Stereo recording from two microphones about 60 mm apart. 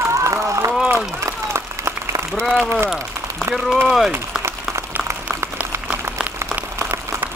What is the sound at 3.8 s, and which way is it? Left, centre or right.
Speech, centre.